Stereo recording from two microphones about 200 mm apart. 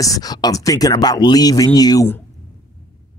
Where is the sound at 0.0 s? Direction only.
20° left (ahead or behind).